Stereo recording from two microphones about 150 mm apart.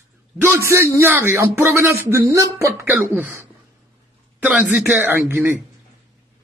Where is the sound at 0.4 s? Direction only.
15° right (ahead or behind).